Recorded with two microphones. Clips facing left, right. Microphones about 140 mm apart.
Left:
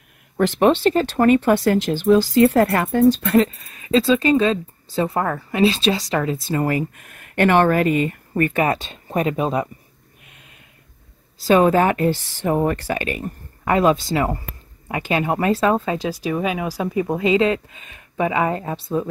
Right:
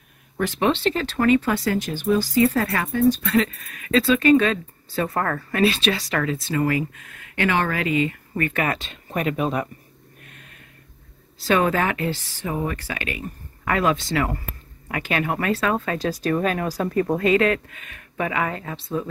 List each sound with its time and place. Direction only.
0.6 s speech: 45° left (ahead or behind)
1.9 s speech: 75° left (ahead or behind)
2.6 s speech: 45° left (ahead or behind)
3.1 s speech: 25° left (ahead or behind)
5.6 s a woman's voice: 25° left (ahead or behind)
7.3 s speech: 50° left (ahead or behind)
8.5 s speech: 25° left (ahead or behind)
10.2 s a sound: 15° left (ahead or behind)
11.4 s a woman's voice: 35° left (ahead or behind)
12.4 s speech: 55° left (ahead or behind)
12.9 s a woman's voice: 35° left (ahead or behind)
16.0 s speech: 10° left (ahead or behind); by 19.0 s 30° left (ahead or behind)